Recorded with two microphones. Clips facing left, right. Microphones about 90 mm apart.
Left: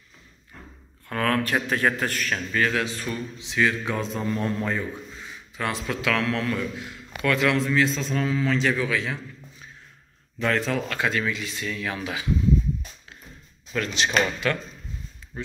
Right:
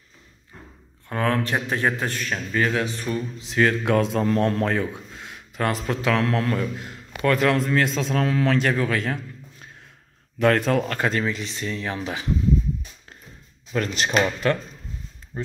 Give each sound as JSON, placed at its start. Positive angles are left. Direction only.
{"t": 1.0, "sound": "a man's voice", "side_deg": -20}
{"t": 3.3, "sound": "a man's voice", "side_deg": -45}
{"t": 3.8, "sound": "a man's voice", "side_deg": -70}
{"t": 5.6, "sound": "a man's voice", "side_deg": -40}
{"t": 13.7, "sound": "speech", "side_deg": -40}